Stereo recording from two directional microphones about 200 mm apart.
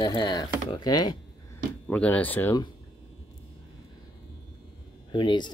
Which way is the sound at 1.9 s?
10° left (ahead or behind).